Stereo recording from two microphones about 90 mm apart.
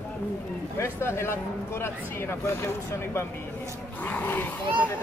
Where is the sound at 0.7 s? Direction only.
30° left (ahead or behind).